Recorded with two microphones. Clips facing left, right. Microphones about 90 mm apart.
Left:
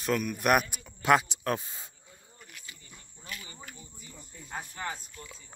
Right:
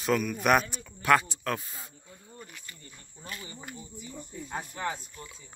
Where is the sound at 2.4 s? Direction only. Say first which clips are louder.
Right 2 dB; centre (ahead or behind).